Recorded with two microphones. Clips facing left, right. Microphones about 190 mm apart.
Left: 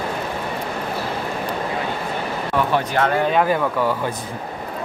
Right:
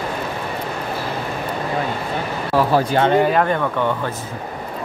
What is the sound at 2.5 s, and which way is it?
Speech, 30° right (ahead or behind).